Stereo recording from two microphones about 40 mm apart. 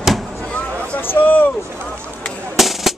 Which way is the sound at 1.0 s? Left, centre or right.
Left.